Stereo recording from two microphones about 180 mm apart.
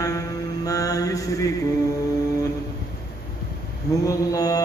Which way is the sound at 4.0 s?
20° left (ahead or behind).